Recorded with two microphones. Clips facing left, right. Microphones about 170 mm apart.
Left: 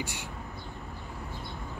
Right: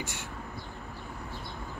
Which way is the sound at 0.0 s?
15° left (ahead or behind).